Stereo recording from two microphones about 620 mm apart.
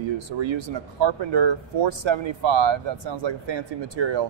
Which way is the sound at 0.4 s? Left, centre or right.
Right.